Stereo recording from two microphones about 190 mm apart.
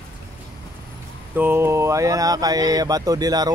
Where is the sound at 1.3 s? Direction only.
10° right (ahead or behind).